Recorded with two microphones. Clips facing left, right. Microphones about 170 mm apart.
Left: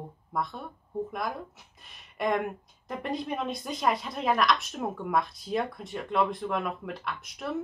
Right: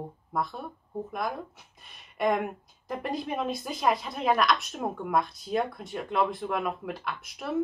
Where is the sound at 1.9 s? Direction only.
Centre (ahead or behind).